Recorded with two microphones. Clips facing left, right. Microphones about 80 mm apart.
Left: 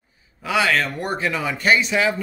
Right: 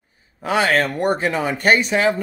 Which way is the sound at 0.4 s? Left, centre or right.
Right.